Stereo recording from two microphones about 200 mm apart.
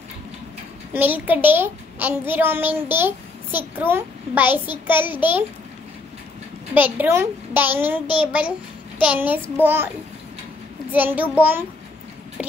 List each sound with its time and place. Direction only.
0.9 s a child's voice: 10° right (ahead or behind)
6.7 s a child's voice: 10° right (ahead or behind)
10.9 s a child's voice: 10° right (ahead or behind)